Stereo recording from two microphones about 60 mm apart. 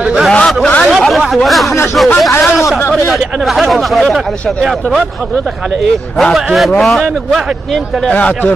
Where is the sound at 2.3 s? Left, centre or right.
Left.